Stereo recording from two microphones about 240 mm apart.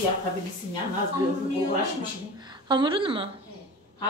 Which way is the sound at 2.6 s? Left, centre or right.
Centre.